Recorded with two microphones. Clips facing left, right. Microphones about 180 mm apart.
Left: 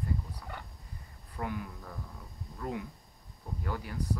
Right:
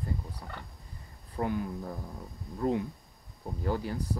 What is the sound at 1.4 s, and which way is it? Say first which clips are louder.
Speech: right 6 dB; 30° right (ahead or behind).